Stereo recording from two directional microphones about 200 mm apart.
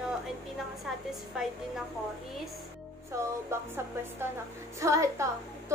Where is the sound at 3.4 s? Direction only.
10° right (ahead or behind).